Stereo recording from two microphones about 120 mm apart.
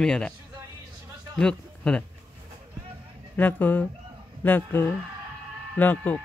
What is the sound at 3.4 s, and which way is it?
Speech, 15° left (ahead or behind).